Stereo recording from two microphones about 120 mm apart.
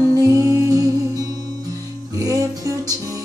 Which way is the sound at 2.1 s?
25° right (ahead or behind).